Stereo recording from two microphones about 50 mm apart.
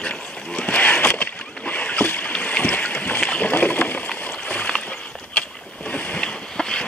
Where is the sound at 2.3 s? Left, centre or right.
Left.